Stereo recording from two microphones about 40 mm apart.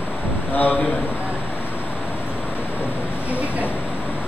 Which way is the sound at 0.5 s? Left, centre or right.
Left.